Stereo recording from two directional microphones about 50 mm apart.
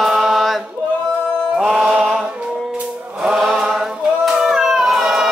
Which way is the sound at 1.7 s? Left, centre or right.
Centre.